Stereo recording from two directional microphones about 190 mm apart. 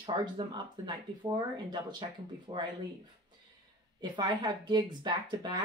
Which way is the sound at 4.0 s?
25° right (ahead or behind).